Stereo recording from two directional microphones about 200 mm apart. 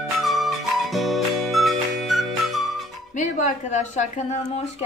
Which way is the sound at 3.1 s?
40° left (ahead or behind).